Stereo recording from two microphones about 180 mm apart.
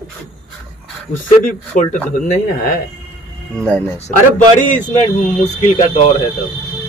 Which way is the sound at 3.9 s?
40° left (ahead or behind).